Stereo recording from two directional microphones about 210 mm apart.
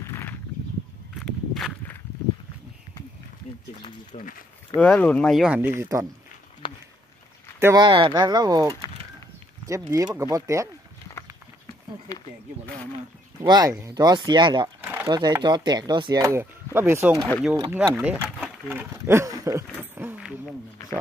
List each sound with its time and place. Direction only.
0.0 s a sound: 10° left (ahead or behind)
1.2 s walk: centre (ahead or behind)
4.1 s speech: 35° left (ahead or behind)
4.7 s speech: 5° left (ahead or behind)
5.8 s speech: 15° right (ahead or behind)
6.6 s a sound: 25° left (ahead or behind)
7.6 s speech: 20° right (ahead or behind)
12.1 s speech: 15° left (ahead or behind)
13.4 s speech: 20° right (ahead or behind)
17.3 s speech: centre (ahead or behind)
19.8 s a sound: 10° right (ahead or behind)